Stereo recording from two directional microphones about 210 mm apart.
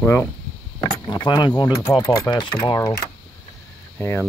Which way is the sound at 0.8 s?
20° left (ahead or behind).